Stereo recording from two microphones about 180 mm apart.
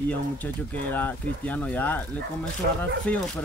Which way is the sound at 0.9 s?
10° left (ahead or behind).